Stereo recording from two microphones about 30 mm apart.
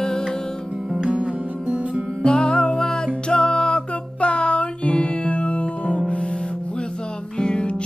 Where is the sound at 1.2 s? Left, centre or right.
Right.